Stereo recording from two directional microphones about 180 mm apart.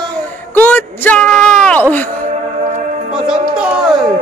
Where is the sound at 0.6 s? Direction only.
10° left (ahead or behind).